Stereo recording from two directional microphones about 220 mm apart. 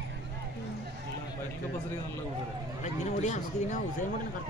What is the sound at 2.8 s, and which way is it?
Speech, 30° left (ahead or behind).